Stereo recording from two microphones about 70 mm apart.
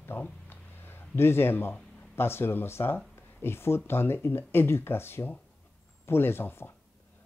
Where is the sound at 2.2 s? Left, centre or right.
Left.